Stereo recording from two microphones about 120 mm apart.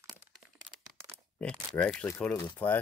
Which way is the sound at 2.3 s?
35° left (ahead or behind).